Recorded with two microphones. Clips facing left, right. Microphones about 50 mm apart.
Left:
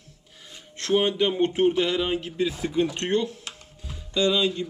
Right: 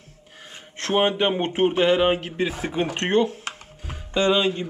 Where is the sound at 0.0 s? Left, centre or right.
Right.